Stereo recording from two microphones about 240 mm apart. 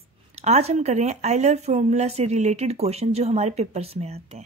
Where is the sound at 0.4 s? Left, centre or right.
Right.